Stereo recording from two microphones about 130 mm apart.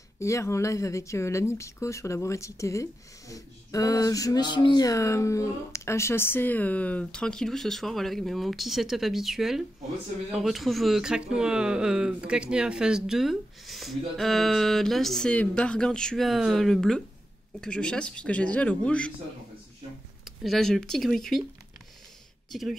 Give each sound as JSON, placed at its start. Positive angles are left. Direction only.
{"t": 0.2, "sound": "a man's voice", "side_deg": 20}
{"t": 20.2, "sound": "speech", "side_deg": 0}
{"t": 22.5, "sound": "speech", "side_deg": 0}